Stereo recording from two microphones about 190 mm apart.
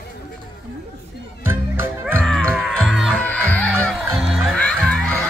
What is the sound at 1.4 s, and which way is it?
Music, 10° right (ahead or behind).